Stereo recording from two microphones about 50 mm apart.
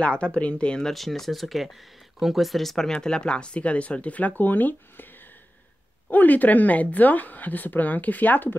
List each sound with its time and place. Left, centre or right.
0.0 s speech: left
0.8 s speech: centre
2.9 s speech: centre; by 5.0 s left
6.0 s speech: left